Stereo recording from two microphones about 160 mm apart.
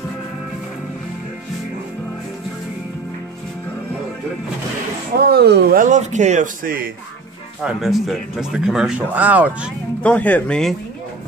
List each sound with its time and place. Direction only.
5.2 s speech: 85° right
5.8 s a man's voice: 50° right (ahead or behind)
7.6 s speech: centre (ahead or behind)
10.0 s speech: 10° left (ahead or behind)